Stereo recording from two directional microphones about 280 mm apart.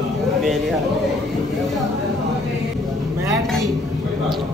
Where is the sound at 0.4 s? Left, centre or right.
Centre.